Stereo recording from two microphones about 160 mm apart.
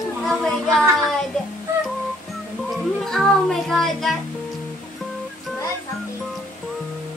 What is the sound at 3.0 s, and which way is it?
Music, centre (ahead or behind).